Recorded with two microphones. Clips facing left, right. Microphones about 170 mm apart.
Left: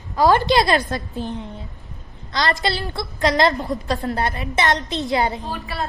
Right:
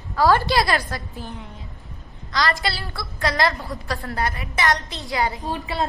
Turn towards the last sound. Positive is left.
turn(degrees=-20)  # may be behind; listen again after turning